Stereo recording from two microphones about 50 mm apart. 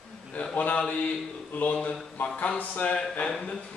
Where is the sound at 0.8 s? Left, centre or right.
Left.